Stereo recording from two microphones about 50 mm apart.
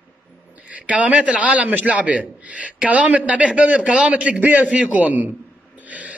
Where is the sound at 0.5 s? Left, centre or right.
Right.